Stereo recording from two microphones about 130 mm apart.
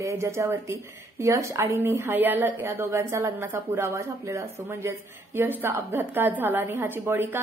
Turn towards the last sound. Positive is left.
turn(degrees=-15)  # may be behind; listen again after turning